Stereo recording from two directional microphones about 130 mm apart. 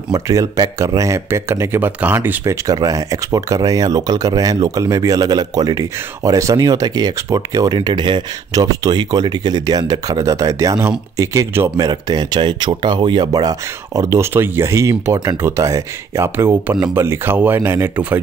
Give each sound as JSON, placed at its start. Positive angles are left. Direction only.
{"t": 0.1, "sound": "speech", "side_deg": -25}